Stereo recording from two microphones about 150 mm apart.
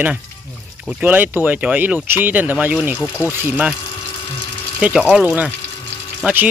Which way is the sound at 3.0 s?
15° left (ahead or behind).